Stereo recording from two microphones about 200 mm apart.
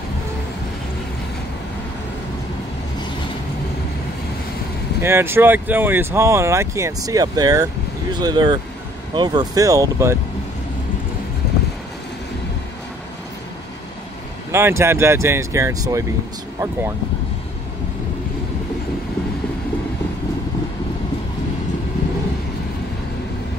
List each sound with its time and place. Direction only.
5.0 s speech: 10° right (ahead or behind)
14.5 s speech: 10° right (ahead or behind)